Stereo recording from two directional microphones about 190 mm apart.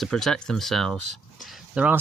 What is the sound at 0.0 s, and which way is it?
Speech, centre (ahead or behind).